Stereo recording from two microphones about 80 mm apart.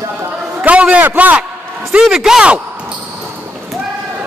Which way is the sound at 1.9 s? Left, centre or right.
Centre.